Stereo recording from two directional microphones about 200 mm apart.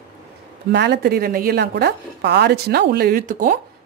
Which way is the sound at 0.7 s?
55° right (ahead or behind).